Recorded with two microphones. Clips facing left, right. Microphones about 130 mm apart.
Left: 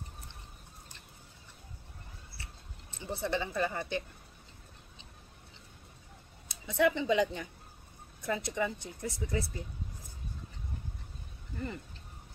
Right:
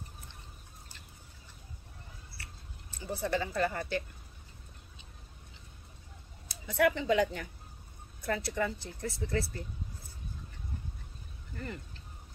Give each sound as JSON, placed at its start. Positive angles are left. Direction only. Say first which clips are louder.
{"t": 2.3, "sound": "a sound", "louder": "even", "side_deg": 25}
{"t": 6.5, "sound": "speech", "louder": "even", "side_deg": 20}
{"t": 11.5, "sound": "speech", "louder": "left 2 dB", "side_deg": 15}